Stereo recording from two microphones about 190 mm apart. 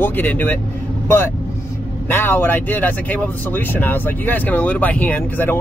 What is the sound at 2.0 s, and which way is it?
Speech, 10° left (ahead or behind).